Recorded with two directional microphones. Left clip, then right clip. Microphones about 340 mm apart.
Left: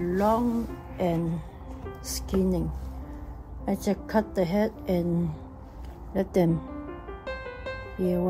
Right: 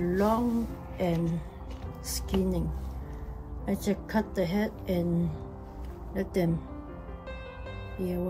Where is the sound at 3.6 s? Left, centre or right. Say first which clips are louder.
Left 3 dB; centre.